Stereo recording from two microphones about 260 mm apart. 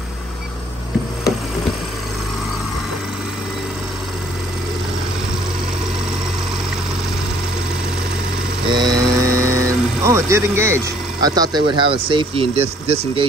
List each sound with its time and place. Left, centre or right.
8.6 s mantra: centre
10.0 s speech: centre